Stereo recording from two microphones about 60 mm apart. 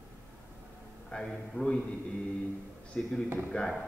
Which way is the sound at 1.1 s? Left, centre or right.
Left.